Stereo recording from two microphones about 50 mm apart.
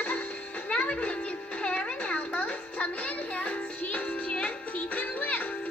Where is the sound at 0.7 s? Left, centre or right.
Left.